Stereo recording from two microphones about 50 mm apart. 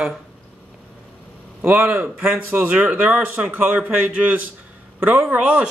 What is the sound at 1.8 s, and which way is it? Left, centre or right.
Speech, right.